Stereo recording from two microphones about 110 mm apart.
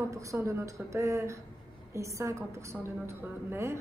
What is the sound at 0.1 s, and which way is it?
A woman's voice, 30° right (ahead or behind).